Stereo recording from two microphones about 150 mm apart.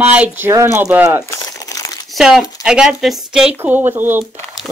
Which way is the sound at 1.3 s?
25° left (ahead or behind).